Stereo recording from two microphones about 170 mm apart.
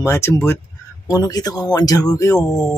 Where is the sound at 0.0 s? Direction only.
15° left (ahead or behind).